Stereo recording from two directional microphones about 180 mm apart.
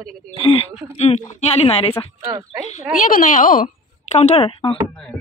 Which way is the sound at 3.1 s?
45° left (ahead or behind).